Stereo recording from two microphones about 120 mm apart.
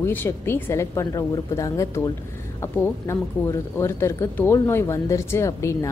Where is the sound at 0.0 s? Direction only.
20° left (ahead or behind).